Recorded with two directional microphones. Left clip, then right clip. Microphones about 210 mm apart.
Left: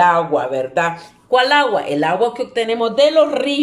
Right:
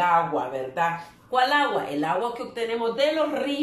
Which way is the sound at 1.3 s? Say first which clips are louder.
Left 8 dB; 45° left (ahead or behind).